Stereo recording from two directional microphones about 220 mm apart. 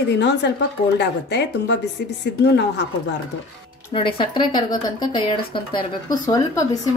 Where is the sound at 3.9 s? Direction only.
20° left (ahead or behind).